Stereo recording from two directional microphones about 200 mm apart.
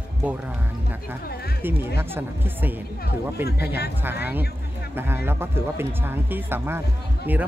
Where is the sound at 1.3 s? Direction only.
50° left (ahead or behind).